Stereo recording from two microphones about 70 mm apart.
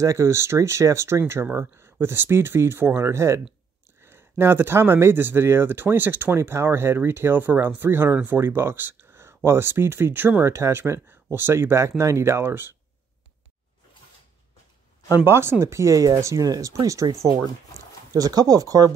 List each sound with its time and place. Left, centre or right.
0.0 s speech: right
15.2 s speech: right
18.1 s speech: right